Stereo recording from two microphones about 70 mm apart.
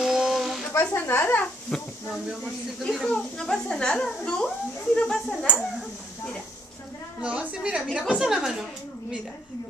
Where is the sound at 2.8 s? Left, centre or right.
Centre.